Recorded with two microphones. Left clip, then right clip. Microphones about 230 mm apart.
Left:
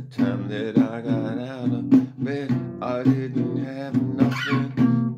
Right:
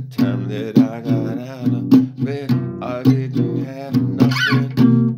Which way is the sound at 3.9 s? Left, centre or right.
Right.